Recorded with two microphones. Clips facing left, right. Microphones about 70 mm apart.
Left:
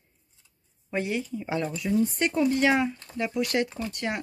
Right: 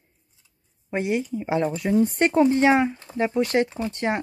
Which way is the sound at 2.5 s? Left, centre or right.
Right.